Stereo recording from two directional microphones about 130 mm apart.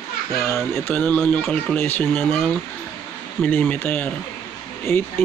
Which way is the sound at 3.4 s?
10° left (ahead or behind).